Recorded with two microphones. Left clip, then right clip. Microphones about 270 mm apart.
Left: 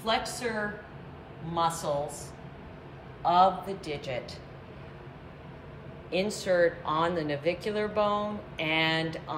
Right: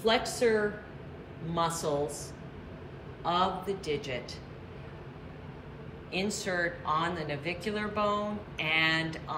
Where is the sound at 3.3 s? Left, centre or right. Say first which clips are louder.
Left 6 dB; centre.